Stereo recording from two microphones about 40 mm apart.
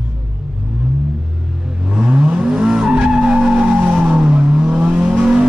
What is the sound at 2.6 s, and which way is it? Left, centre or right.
Vehicle, right.